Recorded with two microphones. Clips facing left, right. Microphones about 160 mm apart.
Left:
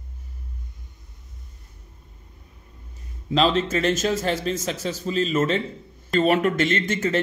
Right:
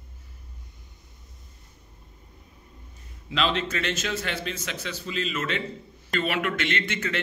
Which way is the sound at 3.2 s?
35° left (ahead or behind).